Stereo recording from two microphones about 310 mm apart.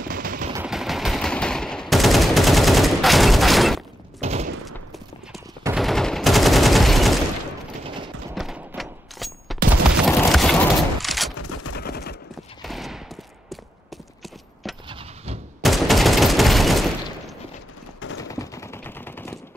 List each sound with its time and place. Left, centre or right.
0.0 s a sound: right
0.5 s machine gun: centre
4.2 s fusillade: right
4.6 s fusillade: centre
5.6 s gunshot: centre
8.4 s fusillade: centre
11.3 s a sound: left
11.7 s fusillade: left
12.6 s fusillade: centre
14.2 s clip-clop: centre
14.9 s vehicle: centre
15.6 s fusillade: centre
18.3 s gunshot: centre